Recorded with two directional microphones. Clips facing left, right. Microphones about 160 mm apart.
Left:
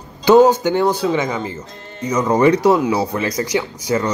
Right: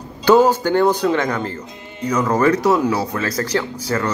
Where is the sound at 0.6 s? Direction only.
10° left (ahead or behind).